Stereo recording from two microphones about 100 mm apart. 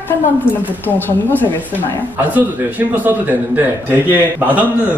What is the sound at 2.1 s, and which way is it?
A man's voice, 15° right (ahead or behind).